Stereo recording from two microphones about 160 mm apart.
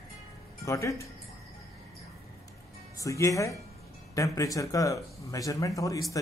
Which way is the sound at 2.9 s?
20° left (ahead or behind).